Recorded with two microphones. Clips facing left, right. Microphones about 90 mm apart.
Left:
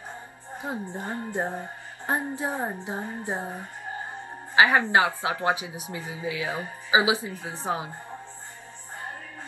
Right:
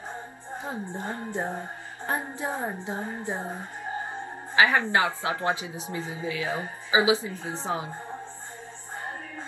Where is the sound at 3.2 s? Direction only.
20° left (ahead or behind).